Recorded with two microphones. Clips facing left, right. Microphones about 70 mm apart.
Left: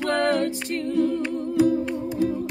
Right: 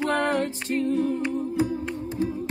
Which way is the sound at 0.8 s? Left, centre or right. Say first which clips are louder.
Left 3 dB; left.